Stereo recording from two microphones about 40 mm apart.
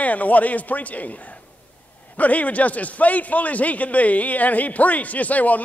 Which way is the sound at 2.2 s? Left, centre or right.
Left.